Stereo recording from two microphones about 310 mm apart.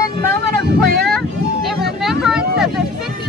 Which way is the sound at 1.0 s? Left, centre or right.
Centre.